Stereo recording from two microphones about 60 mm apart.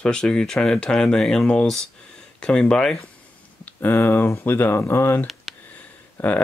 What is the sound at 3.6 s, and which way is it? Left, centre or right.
Speech, left.